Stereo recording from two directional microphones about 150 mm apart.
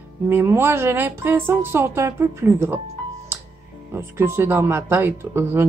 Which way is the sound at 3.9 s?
15° right (ahead or behind).